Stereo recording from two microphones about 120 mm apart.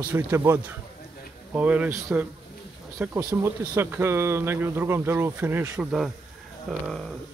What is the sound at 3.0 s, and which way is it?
Speech, 10° right (ahead or behind).